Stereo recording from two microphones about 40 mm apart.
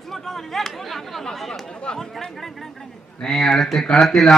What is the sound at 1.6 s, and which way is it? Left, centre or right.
Chatter, centre.